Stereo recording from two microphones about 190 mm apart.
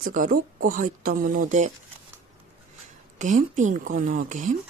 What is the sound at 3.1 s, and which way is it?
Speech, 40° right (ahead or behind).